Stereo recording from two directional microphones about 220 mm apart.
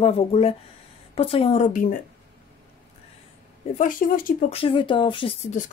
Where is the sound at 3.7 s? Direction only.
40° left (ahead or behind).